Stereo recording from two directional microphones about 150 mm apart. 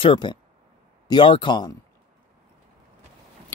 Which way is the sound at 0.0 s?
30° left (ahead or behind).